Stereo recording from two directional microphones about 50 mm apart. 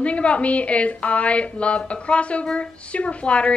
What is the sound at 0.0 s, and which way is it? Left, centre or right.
A woman's voice, left.